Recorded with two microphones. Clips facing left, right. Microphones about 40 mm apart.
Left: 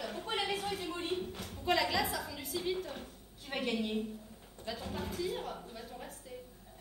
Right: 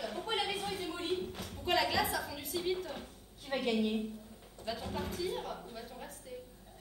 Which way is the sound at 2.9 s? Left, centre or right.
Centre.